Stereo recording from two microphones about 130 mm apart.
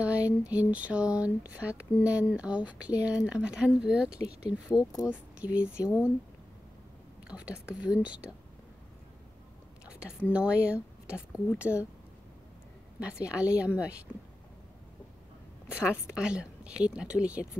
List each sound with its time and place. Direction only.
0.0 s speech: 10° right (ahead or behind)
4.7 s speech: 30° left (ahead or behind)
5.1 s speech: 10° right (ahead or behind)
7.2 s speech: 5° right (ahead or behind)
9.8 s whispering: 5° right (ahead or behind)
10.3 s speech: 10° right (ahead or behind)
13.0 s speech: 10° right (ahead or behind)
15.7 s speech: 10° right (ahead or behind)